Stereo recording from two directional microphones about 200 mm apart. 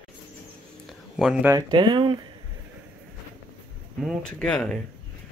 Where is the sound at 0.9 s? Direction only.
Centre (ahead or behind).